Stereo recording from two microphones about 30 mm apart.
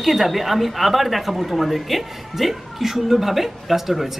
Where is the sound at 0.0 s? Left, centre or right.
Centre.